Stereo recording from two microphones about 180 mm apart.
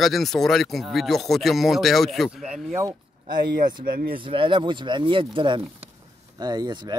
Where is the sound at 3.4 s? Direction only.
55° right (ahead or behind).